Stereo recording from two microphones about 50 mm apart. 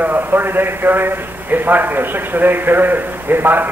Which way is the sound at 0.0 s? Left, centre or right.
Right.